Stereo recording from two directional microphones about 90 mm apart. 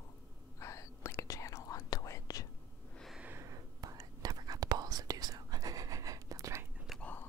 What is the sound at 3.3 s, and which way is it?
Whispering, 35° right (ahead or behind).